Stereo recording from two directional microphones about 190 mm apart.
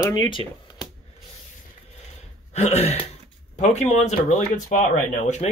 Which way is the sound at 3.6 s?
35° left (ahead or behind).